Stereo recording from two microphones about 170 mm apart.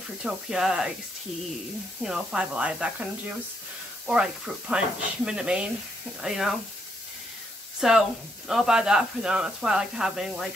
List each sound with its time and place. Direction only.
0.2 s speech: 5° right (ahead or behind)
2.0 s speech: 5° right (ahead or behind)
7.8 s speech: centre (ahead or behind)